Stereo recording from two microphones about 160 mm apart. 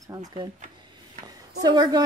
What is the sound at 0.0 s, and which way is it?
Speech, 25° right (ahead or behind).